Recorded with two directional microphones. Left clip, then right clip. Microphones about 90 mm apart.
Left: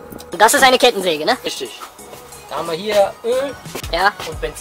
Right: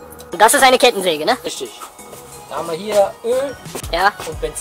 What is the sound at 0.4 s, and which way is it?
A woman's voice, 15° left (ahead or behind).